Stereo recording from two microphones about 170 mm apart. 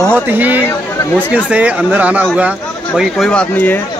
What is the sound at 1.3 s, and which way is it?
Speech, 5° right (ahead or behind).